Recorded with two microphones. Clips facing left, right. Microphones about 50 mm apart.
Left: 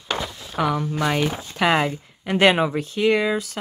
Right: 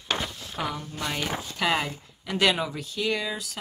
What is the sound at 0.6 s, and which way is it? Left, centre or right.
Speech, left.